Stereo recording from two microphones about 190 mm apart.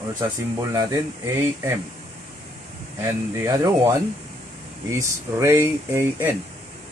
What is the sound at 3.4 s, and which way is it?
Speech, 15° right (ahead or behind).